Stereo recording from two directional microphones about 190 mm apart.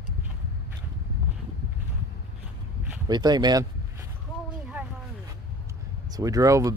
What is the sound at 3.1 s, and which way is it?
Speech, 20° right (ahead or behind).